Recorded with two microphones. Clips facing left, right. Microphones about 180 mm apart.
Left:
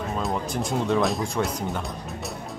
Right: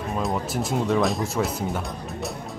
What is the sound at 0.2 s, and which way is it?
Speech, centre (ahead or behind).